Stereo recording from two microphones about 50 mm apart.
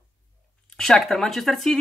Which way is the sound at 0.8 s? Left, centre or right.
Centre.